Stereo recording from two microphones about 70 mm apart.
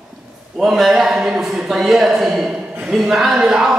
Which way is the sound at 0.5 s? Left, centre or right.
Centre.